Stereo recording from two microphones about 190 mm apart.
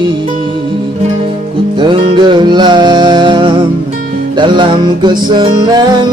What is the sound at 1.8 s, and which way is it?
Music, 25° right (ahead or behind).